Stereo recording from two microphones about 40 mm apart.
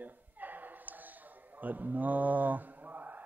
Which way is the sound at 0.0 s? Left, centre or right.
Right.